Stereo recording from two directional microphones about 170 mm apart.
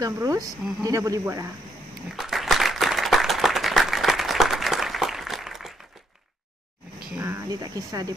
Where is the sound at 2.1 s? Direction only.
Centre (ahead or behind).